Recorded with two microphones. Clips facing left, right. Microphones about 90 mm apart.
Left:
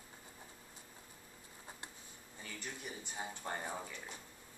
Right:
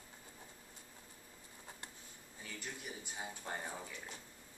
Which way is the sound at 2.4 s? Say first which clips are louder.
Left 1 dB; 5° right (ahead or behind).